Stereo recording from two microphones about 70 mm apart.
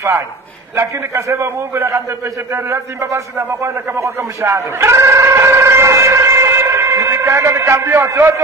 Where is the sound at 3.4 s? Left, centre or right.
Right.